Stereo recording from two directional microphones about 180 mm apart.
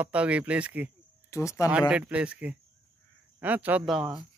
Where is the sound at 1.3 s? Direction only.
15° left (ahead or behind).